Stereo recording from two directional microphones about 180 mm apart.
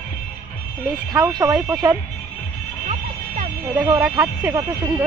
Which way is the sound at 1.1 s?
15° right (ahead or behind).